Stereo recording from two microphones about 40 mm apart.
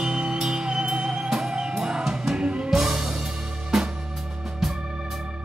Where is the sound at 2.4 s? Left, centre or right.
Right.